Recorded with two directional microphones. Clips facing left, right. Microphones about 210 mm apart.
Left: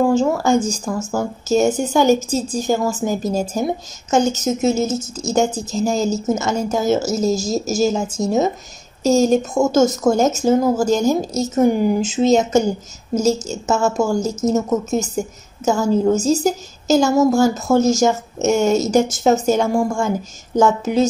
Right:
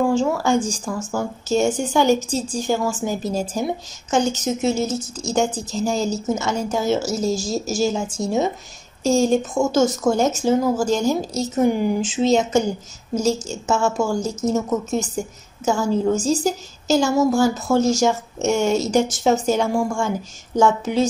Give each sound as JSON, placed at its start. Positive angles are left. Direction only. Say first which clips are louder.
{"t": 0.0, "sound": "a woman's voice", "louder": "left 3 dB", "side_deg": 40}